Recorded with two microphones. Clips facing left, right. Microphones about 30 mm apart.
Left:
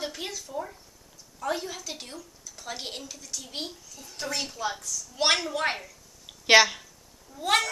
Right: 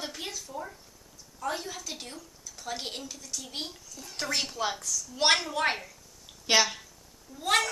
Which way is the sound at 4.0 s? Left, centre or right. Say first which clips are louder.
Right 1 dB; right.